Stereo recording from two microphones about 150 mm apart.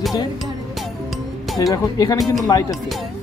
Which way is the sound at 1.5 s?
25° left (ahead or behind).